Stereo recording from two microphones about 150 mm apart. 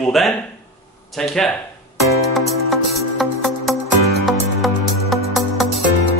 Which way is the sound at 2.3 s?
Centre (ahead or behind).